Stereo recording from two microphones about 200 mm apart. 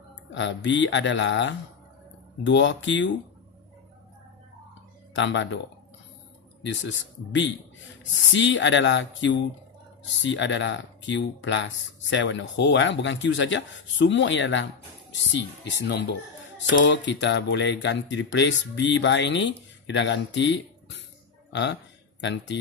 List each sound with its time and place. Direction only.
0.3 s speech: 65° left (ahead or behind)
5.1 s speech: 65° left (ahead or behind)
6.6 s speech: 65° left (ahead or behind)